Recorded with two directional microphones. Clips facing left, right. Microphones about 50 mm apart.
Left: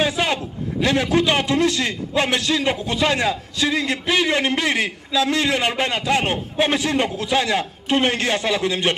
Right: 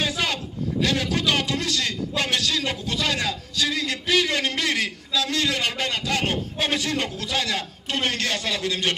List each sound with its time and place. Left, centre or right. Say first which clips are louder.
0.0 s a man's voice: left 5 dB; left